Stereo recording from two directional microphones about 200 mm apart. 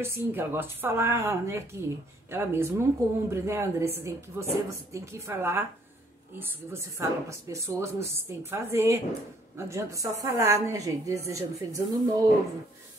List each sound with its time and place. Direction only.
0.0 s a woman's voice: 10° right (ahead or behind)